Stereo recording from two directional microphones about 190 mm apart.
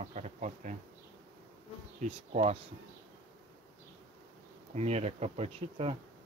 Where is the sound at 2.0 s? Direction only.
35° right (ahead or behind).